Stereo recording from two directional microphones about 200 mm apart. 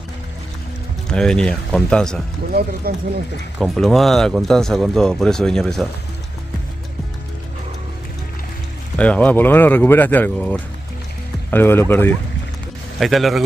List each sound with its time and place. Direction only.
1.1 s speech: 5° left (ahead or behind)
2.9 s speech: 50° right (ahead or behind)
3.5 s speech: centre (ahead or behind)
8.9 s speech: 5° left (ahead or behind)
13.0 s speech: centre (ahead or behind)